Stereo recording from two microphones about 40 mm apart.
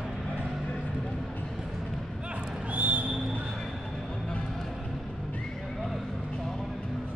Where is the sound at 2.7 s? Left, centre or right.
Right.